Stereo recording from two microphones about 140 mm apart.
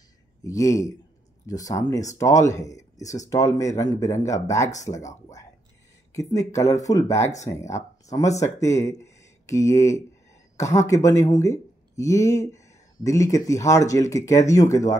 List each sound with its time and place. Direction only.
0.4 s speech: 25° left (ahead or behind)
6.1 s speech: 20° left (ahead or behind)